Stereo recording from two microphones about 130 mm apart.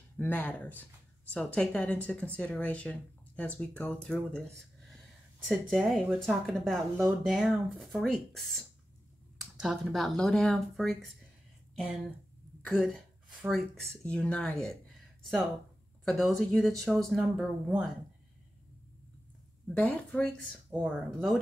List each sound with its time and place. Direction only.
0.2 s speech: 15° left (ahead or behind)
5.5 s speech: centre (ahead or behind)
12.6 s speech: 10° left (ahead or behind)
14.0 s speech: 10° left (ahead or behind)
16.1 s speech: centre (ahead or behind)
19.7 s speech: 10° left (ahead or behind)
20.8 s speech: centre (ahead or behind)